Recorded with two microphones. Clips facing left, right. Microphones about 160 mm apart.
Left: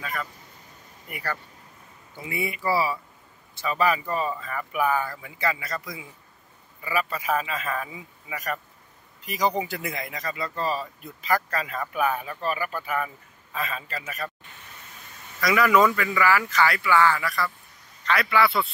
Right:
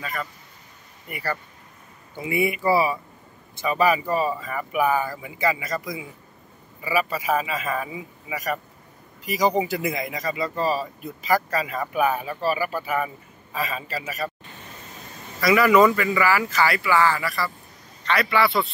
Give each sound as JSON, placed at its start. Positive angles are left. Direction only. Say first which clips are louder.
{"t": 0.0, "sound": "speech", "louder": "right 1 dB", "side_deg": 0}
{"t": 2.1, "sound": "speech", "louder": "right 7 dB", "side_deg": -15}
{"t": 15.4, "sound": "speech", "louder": "right 3 dB", "side_deg": -5}